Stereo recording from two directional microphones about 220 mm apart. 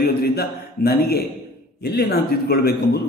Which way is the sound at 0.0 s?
45° left (ahead or behind).